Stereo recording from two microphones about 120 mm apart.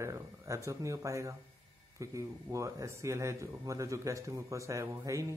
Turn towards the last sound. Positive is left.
turn(degrees=-25)  # may be behind; listen again after turning